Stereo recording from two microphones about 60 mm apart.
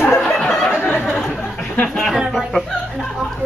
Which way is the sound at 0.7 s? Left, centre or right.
Left.